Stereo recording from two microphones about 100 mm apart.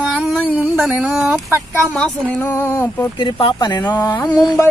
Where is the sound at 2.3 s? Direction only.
20° left (ahead or behind).